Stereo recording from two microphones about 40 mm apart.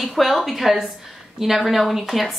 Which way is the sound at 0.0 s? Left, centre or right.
Centre.